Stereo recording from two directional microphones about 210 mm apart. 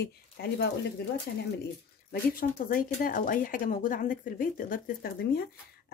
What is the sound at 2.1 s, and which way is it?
Speech, 45° left (ahead or behind).